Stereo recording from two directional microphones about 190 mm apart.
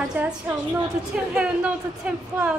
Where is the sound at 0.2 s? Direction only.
10° right (ahead or behind).